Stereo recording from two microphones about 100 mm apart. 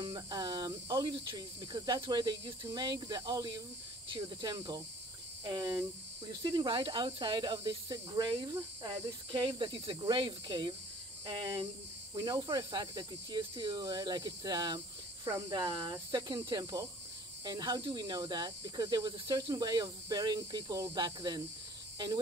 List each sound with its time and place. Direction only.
0.0 s speech: 40° right (ahead or behind)
4.6 s speech: 35° right (ahead or behind); by 10.7 s 55° right (ahead or behind)
12.1 s speech: 45° right (ahead or behind)
17.5 s speech: 45° right (ahead or behind)